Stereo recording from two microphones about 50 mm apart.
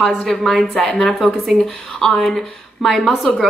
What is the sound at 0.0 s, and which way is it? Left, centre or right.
A woman's voice, centre.